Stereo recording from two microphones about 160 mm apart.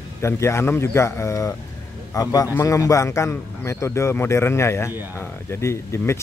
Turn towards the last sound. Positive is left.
turn(degrees=15)  # may be behind; listen again after turning